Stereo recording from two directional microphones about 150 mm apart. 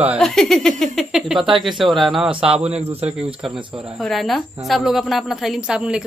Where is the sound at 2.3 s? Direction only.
40° right (ahead or behind).